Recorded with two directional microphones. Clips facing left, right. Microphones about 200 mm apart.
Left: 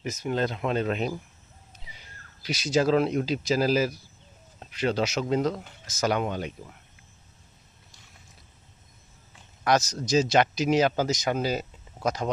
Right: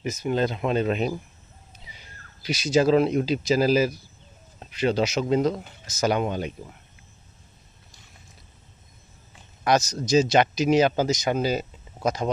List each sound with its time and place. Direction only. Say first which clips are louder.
0.0 s speech: right 3 dB; 5° right (ahead or behind)
2.4 s speech: right 3 dB; 5° right (ahead or behind)
9.7 s speech: right 2 dB; 5° left (ahead or behind)